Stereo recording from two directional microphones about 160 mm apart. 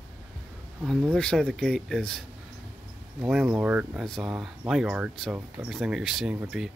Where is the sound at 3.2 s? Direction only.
10° right (ahead or behind).